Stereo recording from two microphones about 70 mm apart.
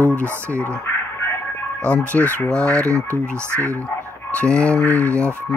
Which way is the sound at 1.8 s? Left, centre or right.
Centre.